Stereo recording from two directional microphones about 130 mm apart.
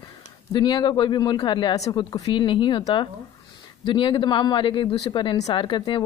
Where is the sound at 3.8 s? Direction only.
40° left (ahead or behind).